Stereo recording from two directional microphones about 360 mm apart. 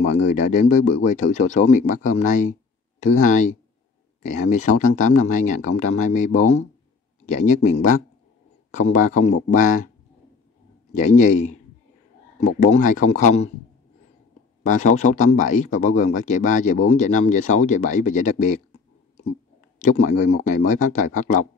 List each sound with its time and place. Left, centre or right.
0.0 s speech: centre
8.7 s speech: centre
10.9 s speech: centre
12.7 s speech: centre
14.6 s speech: centre
19.8 s speech: centre